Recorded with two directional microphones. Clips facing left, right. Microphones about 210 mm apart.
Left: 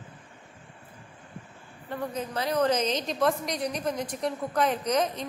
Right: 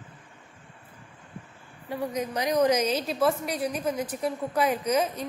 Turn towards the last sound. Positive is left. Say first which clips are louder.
# right 1 dB
turn(degrees=-10)  # may be behind; listen again after turning